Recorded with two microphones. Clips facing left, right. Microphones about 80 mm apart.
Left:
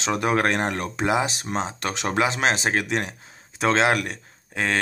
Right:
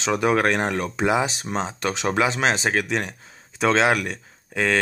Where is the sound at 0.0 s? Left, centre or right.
Centre.